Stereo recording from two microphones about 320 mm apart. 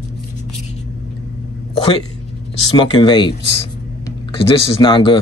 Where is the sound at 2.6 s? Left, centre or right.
Centre.